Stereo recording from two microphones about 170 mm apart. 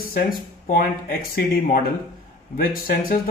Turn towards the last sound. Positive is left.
turn(degrees=60)  # may be behind; listen again after turning